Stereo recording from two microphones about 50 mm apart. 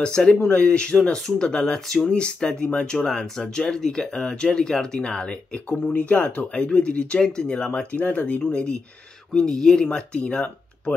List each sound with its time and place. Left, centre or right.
0.0 s speech: centre
2.0 s speech: centre
5.7 s speech: left; by 9.8 s centre
9.8 s speech: left